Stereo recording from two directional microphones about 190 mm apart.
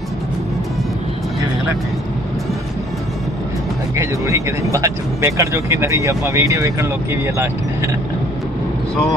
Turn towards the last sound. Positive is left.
turn(degrees=-15)  # may be behind; listen again after turning